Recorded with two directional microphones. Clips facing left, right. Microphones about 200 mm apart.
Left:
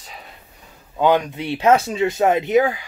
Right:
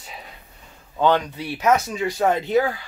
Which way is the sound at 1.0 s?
15° left (ahead or behind).